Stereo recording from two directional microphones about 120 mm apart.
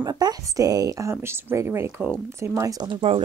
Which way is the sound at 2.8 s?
45° right (ahead or behind).